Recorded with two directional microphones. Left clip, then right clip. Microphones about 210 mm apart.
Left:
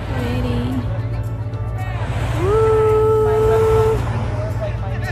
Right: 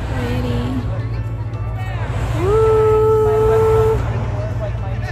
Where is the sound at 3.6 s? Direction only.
50° left (ahead or behind).